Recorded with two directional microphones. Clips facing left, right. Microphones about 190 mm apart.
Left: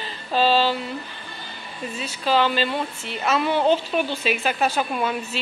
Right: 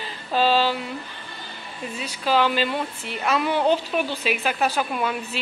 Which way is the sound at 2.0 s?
10° right (ahead or behind).